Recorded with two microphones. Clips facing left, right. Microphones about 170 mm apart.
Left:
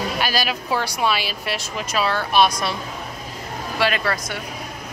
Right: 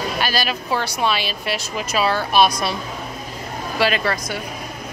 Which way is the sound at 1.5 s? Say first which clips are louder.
Right 2 dB; 5° right (ahead or behind).